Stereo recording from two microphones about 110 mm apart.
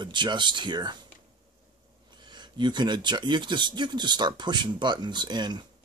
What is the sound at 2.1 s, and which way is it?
Speech, 40° right (ahead or behind).